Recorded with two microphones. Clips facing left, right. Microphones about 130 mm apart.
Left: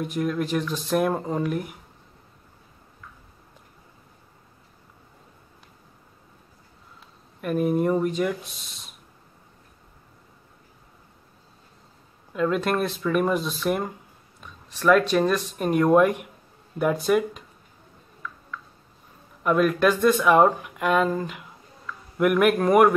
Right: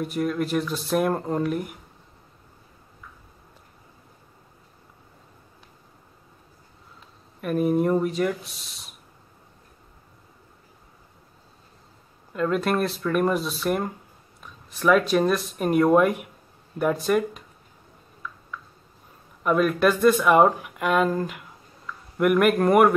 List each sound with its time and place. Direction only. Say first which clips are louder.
0.0 s speech: even; centre (ahead or behind)
7.4 s speech: right 1 dB; centre (ahead or behind)
12.3 s speech: even; centre (ahead or behind)
19.4 s speech: even; centre (ahead or behind)